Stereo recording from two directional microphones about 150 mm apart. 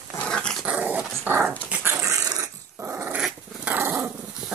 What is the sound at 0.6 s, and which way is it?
Dog, 10° right (ahead or behind).